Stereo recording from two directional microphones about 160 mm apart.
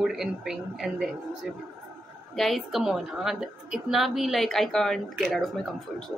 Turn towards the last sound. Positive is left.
turn(degrees=0)  # may be behind; listen again after turning